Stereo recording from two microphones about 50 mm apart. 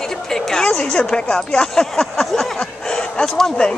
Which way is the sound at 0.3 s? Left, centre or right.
Centre.